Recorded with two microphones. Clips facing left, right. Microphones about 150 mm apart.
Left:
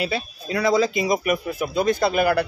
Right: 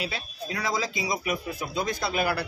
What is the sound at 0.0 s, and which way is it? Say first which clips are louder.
Speech: left 7 dB; 70° left (ahead or behind).